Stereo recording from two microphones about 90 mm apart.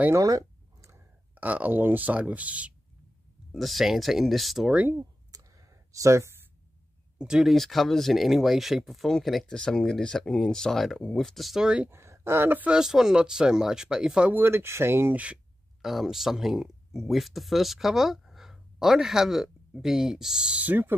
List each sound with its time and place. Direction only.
0.1 s a sound: 35° right (ahead or behind)
1.3 s speech: 20° right (ahead or behind)
3.5 s speech: centre (ahead or behind)
5.3 s clicking: 35° right (ahead or behind)
7.2 s speech: 5° right (ahead or behind)
11.9 s speech: 30° right (ahead or behind)
12.6 s speech: 5° right (ahead or behind)
14.3 s speech: 25° right (ahead or behind)
15.8 s speech: 5° right (ahead or behind); by 20.9 s 20° right (ahead or behind)